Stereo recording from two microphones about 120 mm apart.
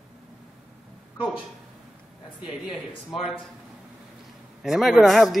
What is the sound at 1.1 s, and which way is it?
Speech, 10° right (ahead or behind).